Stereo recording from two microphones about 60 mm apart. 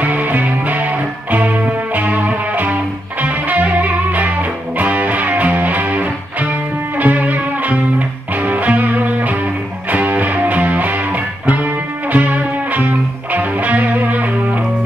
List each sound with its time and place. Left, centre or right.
0.0 s music: right